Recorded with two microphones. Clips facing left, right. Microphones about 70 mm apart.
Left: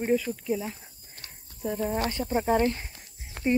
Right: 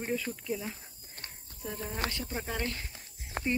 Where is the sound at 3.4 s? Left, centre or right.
Right.